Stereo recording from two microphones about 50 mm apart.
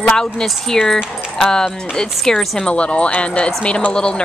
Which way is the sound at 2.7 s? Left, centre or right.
Left.